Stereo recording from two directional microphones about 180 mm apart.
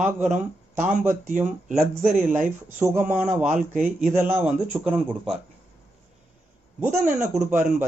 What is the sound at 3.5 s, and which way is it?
Speech, 45° right (ahead or behind).